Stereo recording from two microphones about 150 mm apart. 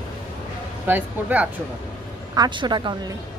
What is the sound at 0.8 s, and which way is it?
Speech, 10° right (ahead or behind).